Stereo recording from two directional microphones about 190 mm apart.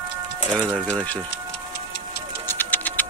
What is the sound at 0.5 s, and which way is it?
Speech, 5° left (ahead or behind).